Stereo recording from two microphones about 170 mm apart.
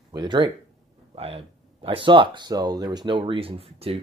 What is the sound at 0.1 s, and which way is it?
Speech, 25° right (ahead or behind).